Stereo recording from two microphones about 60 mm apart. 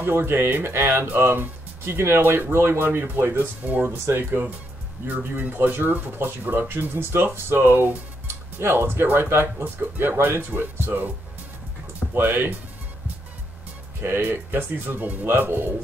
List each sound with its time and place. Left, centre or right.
0.0 s speech: right
12.1 s speech: right
14.0 s speech: right